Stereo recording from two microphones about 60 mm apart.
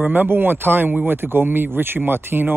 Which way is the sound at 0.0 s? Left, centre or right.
Right.